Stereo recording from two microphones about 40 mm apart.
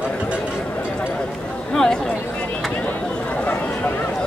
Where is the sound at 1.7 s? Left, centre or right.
Centre.